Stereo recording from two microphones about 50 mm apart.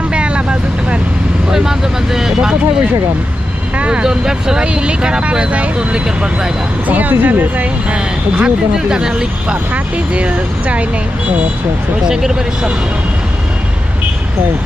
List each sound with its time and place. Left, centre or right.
0.1 s vehicle: right
1.5 s speech: centre
3.7 s speech: right
6.9 s speech: right
8.7 s speech: centre
12.0 s speech: centre